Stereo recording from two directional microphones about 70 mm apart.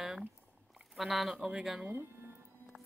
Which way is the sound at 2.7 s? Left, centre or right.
Centre.